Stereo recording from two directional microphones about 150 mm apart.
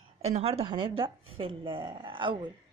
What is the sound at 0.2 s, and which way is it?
A woman's voice, 45° right (ahead or behind).